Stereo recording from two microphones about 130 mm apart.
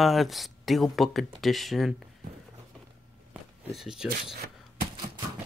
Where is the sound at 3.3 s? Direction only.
5° right (ahead or behind).